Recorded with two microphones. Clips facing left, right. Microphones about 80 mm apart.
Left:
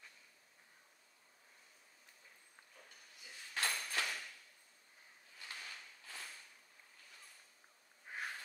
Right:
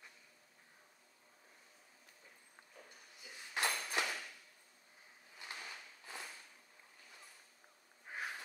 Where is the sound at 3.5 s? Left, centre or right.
Centre.